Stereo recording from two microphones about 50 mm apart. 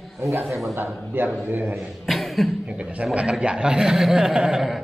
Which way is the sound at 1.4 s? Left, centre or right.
Right.